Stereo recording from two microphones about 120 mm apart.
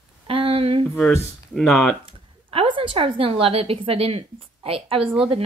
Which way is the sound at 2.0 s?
50° right (ahead or behind).